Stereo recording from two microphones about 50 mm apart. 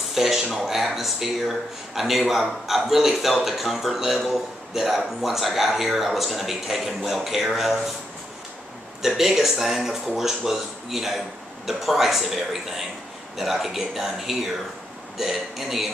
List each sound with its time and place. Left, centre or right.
0.1 s a man's voice: centre
9.0 s a man's voice: centre